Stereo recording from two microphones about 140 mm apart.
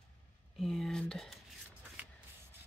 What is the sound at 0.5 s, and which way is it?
Speech, centre (ahead or behind).